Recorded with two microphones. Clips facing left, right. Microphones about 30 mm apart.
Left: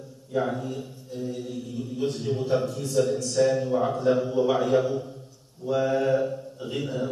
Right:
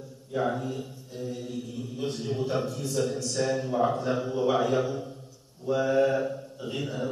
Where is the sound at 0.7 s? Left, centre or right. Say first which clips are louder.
Left 1 dB; centre.